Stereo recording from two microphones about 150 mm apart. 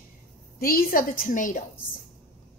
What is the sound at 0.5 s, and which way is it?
A woman's voice, 75° left (ahead or behind).